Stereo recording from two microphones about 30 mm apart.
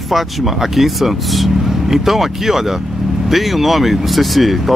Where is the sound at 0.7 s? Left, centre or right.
Centre.